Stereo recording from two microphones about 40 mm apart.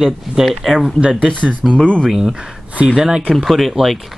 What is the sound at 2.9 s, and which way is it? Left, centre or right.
Speech, right.